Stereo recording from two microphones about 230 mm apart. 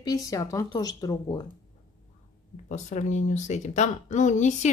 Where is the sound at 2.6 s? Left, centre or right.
Left.